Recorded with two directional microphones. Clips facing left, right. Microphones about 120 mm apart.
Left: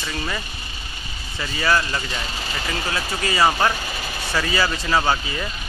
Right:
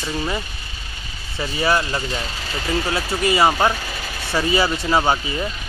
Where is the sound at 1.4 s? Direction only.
25° right (ahead or behind).